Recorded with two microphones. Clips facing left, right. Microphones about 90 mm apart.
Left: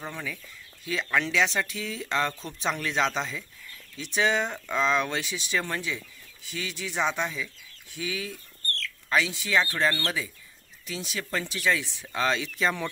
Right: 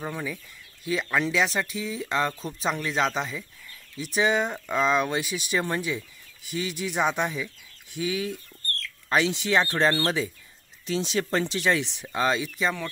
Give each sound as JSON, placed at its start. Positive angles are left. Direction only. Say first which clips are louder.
{"t": 0.0, "sound": "speech", "louder": "right 4 dB", "side_deg": -10}
{"t": 8.0, "sound": "speech", "louder": "right 5 dB", "side_deg": -25}
{"t": 12.1, "sound": "speech", "louder": "right 2 dB", "side_deg": -10}